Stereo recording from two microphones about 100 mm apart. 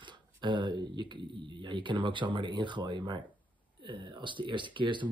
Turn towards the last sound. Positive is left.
turn(degrees=-55)  # may be behind; listen again after turning